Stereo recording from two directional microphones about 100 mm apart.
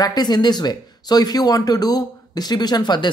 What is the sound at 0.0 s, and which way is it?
Speech, 40° left (ahead or behind).